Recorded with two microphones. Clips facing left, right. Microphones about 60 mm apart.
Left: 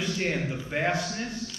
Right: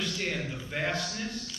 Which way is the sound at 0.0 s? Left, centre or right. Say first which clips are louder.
Left 4 dB; left.